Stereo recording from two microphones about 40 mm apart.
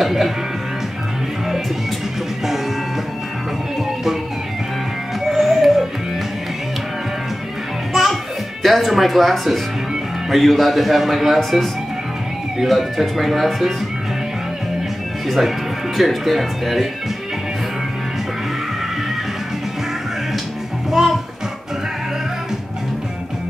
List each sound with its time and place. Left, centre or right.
0.0 s speech: centre
5.2 s music: centre
7.9 s music: centre
8.6 s speech: centre
15.2 s speech: centre